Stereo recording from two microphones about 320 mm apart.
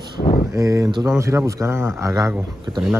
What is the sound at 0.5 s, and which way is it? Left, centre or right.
Speech, centre.